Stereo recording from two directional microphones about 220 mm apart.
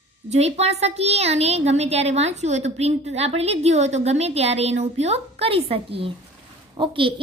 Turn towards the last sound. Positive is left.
turn(degrees=-25)  # may be behind; listen again after turning